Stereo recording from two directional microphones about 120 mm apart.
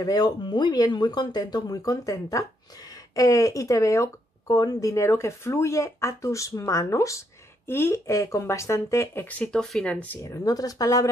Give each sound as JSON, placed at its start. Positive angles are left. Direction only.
{"t": 0.0, "sound": "speech", "side_deg": 35}
{"t": 10.2, "sound": "speech", "side_deg": 30}